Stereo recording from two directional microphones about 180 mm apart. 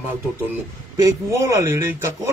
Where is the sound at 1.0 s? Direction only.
15° right (ahead or behind).